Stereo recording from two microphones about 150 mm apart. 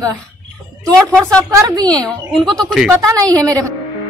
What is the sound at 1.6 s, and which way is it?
Speech, 25° right (ahead or behind).